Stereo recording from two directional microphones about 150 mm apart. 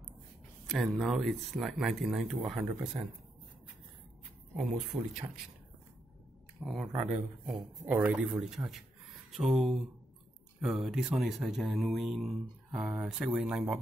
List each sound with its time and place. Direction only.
0.7 s speech: centre (ahead or behind)
4.6 s speech: 5° right (ahead or behind)
6.6 s speech: centre (ahead or behind)